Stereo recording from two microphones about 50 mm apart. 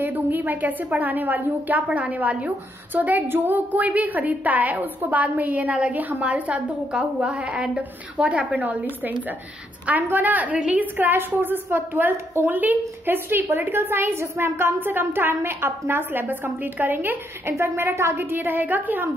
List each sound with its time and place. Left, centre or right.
0.0 s a woman's voice: right
9.8 s a woman's voice: right
12.4 s a woman's voice: right
17.6 s a woman's voice: right
18.3 s a woman's voice: right